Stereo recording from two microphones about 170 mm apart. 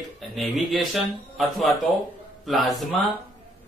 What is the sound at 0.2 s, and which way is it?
Speech, centre (ahead or behind).